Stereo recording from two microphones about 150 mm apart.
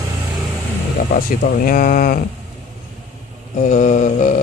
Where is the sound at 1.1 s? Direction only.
60° left (ahead or behind).